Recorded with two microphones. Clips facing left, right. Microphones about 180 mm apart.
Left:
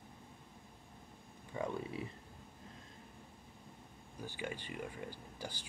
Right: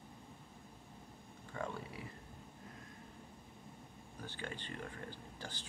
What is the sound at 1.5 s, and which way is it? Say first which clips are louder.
Speech: left 4 dB; 20° left (ahead or behind).